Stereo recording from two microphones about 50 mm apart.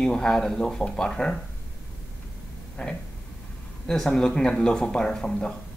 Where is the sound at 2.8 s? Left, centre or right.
Left.